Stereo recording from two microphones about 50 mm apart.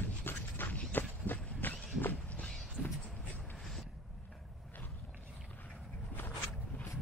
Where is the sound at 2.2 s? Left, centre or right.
Left.